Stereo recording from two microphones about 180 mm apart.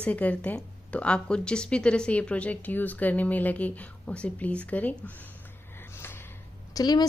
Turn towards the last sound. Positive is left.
turn(degrees=20)  # may be behind; listen again after turning